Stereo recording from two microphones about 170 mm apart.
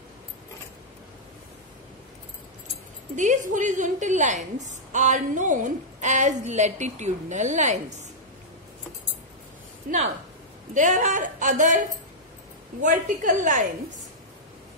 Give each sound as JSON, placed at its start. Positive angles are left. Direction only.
{"t": 3.2, "sound": "a woman's voice", "side_deg": -50}
{"t": 9.8, "sound": "a woman's voice", "side_deg": -40}
{"t": 12.8, "sound": "a woman's voice", "side_deg": -50}